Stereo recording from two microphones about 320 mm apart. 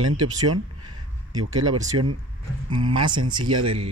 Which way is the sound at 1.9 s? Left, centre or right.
Right.